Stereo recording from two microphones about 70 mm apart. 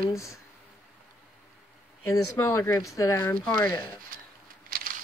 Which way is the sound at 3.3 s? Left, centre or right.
Left.